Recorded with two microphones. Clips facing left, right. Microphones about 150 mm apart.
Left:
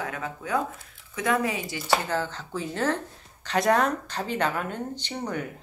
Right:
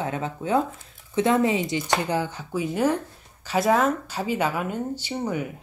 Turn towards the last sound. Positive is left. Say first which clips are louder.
# right 4 dB
turn(degrees=-10)  # may be behind; listen again after turning